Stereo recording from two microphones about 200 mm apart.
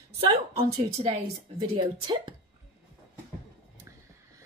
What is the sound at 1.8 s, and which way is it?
Speech, 25° right (ahead or behind).